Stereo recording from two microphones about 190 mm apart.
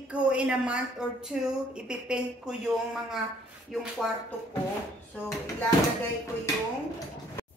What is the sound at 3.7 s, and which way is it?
Speech, centre (ahead or behind).